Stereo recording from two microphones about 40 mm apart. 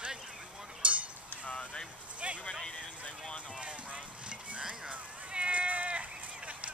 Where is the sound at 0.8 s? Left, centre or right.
Right.